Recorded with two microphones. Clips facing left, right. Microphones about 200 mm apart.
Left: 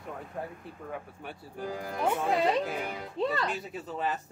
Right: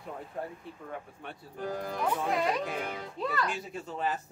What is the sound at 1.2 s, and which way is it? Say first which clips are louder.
Speech: right 3 dB; 10° left (ahead or behind).